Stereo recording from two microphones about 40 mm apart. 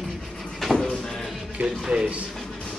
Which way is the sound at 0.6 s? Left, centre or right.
Centre.